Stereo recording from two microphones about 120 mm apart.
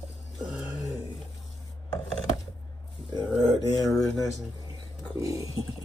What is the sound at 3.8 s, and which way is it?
Speech, 5° left (ahead or behind).